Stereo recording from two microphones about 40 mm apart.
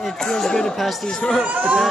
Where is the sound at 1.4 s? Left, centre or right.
Right.